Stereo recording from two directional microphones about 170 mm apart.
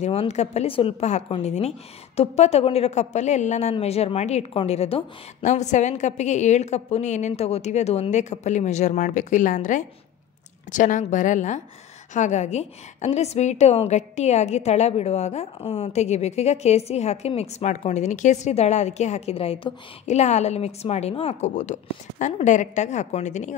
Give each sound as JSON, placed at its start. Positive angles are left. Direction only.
{"t": 0.0, "sound": "a woman's voice", "side_deg": 40}